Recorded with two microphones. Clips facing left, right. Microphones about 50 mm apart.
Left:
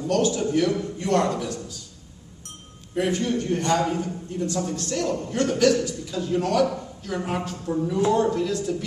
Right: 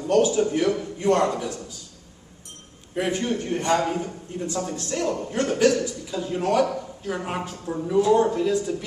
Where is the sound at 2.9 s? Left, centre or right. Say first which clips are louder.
Left 1 dB; centre.